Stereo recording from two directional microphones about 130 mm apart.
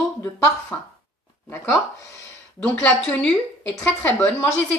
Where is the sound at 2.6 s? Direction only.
10° left (ahead or behind).